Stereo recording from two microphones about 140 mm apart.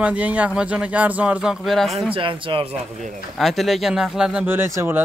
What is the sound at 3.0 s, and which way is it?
Speech, centre (ahead or behind).